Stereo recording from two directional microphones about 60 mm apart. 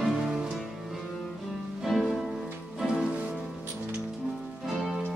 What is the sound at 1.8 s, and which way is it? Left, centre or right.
Music, centre.